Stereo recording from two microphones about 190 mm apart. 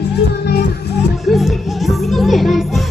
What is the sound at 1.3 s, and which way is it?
Music, centre (ahead or behind).